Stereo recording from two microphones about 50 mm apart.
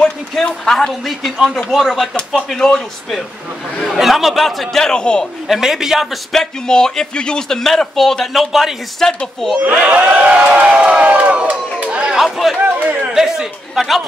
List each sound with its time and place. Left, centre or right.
0.5 s a man's voice: centre
5.5 s a man's voice: centre
6.3 s speech: centre
9.0 s speech: centre
9.9 s speech: right
11.8 s chatter: right
12.2 s a man's voice: centre
12.6 s chatter: right
13.0 s a man's voice: centre